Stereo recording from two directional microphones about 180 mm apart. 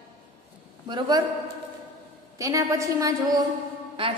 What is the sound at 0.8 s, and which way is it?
Speech, 25° right (ahead or behind).